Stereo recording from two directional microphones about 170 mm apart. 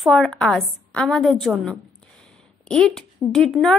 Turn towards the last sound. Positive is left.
turn(degrees=0)  # may be behind; listen again after turning